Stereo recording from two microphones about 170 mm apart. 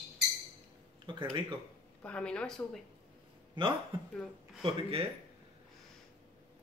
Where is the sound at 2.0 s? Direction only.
5° left (ahead or behind).